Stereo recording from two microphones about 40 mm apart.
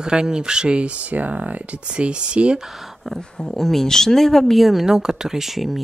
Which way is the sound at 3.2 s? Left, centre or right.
Centre.